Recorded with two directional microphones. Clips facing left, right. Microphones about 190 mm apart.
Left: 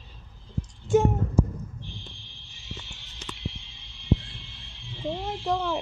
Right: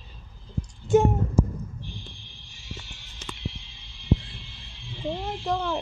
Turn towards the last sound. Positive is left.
turn(degrees=10)  # may be behind; listen again after turning